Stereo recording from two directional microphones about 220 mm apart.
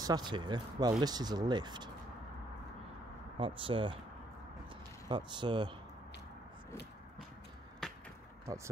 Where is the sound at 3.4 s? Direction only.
25° right (ahead or behind).